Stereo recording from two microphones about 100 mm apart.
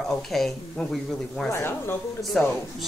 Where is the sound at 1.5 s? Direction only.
25° left (ahead or behind).